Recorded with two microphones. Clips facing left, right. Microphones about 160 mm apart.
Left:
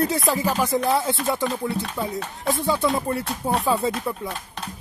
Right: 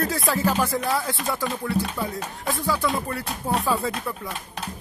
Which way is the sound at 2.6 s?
25° left (ahead or behind).